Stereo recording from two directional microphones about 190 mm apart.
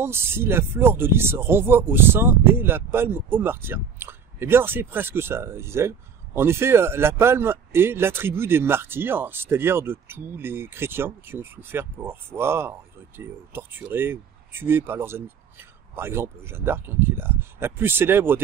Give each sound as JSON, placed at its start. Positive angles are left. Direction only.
{"t": 0.0, "sound": "speech", "side_deg": -10}